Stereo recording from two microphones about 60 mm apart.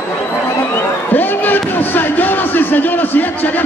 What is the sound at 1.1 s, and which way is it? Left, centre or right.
A man's voice, left.